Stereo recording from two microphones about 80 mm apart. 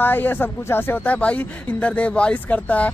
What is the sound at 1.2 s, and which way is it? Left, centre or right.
Speech, centre.